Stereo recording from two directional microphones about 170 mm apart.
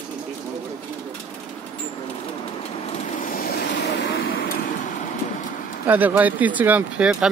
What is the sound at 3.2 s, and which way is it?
Vehicle, 55° left (ahead or behind).